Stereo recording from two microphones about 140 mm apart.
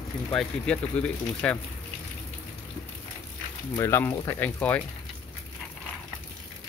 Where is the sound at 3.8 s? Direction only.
20° left (ahead or behind).